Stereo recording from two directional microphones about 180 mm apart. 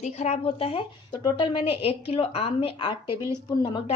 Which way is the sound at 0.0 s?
35° left (ahead or behind).